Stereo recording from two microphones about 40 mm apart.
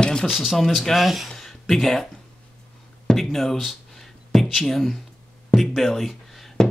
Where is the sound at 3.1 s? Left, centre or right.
Centre.